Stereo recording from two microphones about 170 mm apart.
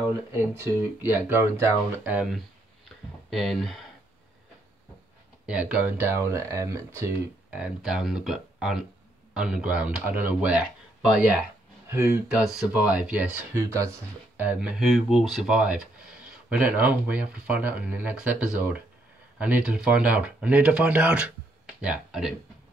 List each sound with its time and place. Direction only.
1.0 s speech: 10° right (ahead or behind)
5.5 s speech: 5° right (ahead or behind)
13.6 s speech: 15° right (ahead or behind)